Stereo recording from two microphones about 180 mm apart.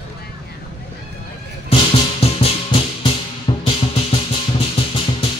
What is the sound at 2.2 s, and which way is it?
Music, 30° left (ahead or behind).